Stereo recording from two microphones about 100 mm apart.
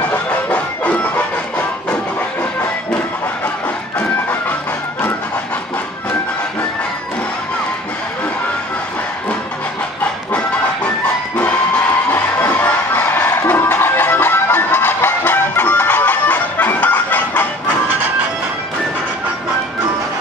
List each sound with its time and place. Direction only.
0.1 s music: 10° left (ahead or behind)
12.4 s music: 35° left (ahead or behind)
12.6 s music: 20° left (ahead or behind)